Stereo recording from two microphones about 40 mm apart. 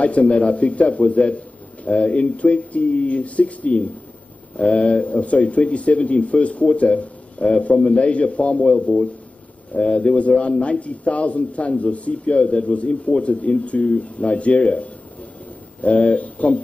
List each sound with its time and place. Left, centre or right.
0.0 s a man's voice: left